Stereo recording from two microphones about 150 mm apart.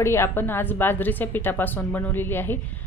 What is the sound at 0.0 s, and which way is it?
A woman's voice, 15° left (ahead or behind).